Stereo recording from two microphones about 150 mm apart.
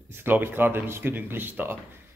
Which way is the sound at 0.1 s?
15° right (ahead or behind).